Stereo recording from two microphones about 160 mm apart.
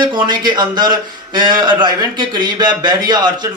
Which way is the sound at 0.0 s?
30° right (ahead or behind).